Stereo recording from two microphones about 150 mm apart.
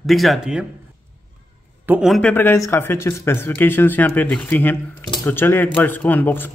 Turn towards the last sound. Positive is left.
turn(degrees=15)  # may be behind; listen again after turning